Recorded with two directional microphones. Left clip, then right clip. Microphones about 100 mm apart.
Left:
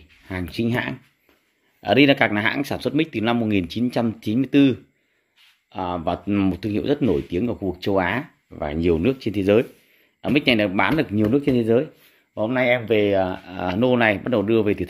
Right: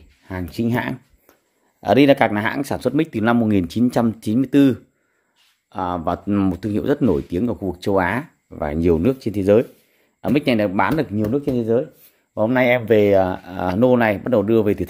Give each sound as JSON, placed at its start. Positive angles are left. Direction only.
{"t": 0.3, "sound": "speech", "side_deg": -15}
{"t": 3.0, "sound": "speech", "side_deg": -35}
{"t": 4.2, "sound": "speech", "side_deg": -25}
{"t": 11.3, "sound": "speech", "side_deg": 20}
{"t": 12.4, "sound": "speech", "side_deg": -55}